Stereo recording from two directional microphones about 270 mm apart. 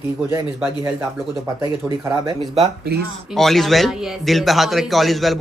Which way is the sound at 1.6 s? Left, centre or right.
Centre.